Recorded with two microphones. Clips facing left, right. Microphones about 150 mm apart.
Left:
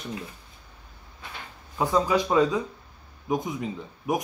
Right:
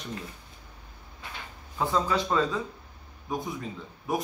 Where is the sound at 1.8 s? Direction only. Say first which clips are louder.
Left 4 dB; 15° left (ahead or behind).